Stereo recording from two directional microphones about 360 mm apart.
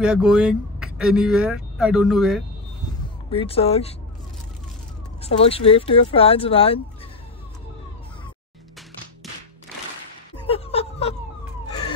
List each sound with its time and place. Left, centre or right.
0.0 s speech: centre
3.3 s speech: centre
5.2 s speech: centre
10.4 s a sound: centre